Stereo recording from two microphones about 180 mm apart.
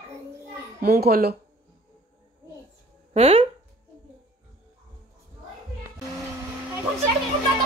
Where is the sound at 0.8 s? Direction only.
60° right (ahead or behind).